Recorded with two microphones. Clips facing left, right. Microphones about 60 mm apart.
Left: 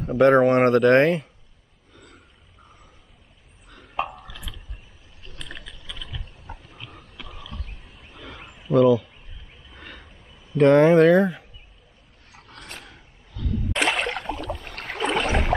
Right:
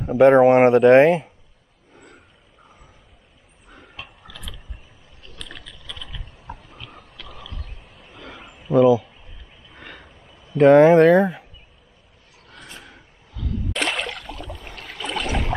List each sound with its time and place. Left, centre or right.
0.0 s speech: centre
2.0 s frog: centre
3.6 s burping: centre
4.3 s a sound: centre
7.3 s wild animals: centre
9.8 s a sound: centre
12.8 s wild animals: centre
13.7 s a sound: centre
14.0 s a sound: left
14.5 s rowboat: centre
14.8 s rowboat: left
15.0 s boat: left